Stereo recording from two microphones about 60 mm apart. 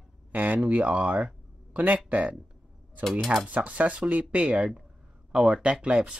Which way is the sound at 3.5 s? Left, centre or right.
Right.